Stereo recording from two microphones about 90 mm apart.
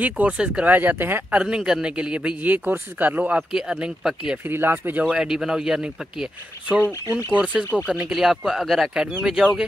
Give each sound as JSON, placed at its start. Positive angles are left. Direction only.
{"t": 0.0, "sound": "speech", "side_deg": -15}
{"t": 1.4, "sound": "speech", "side_deg": -10}
{"t": 4.5, "sound": "speech", "side_deg": -25}
{"t": 5.0, "sound": "speech", "side_deg": -10}
{"t": 7.3, "sound": "speech", "side_deg": -15}